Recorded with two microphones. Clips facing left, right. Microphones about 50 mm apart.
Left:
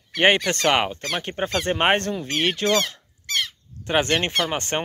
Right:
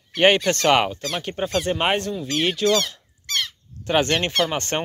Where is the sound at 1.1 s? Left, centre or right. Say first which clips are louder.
Even; left.